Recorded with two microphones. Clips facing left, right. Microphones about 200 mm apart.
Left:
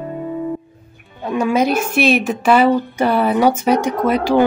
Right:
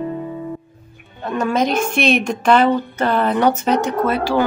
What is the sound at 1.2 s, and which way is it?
A woman's voice, 10° left (ahead or behind).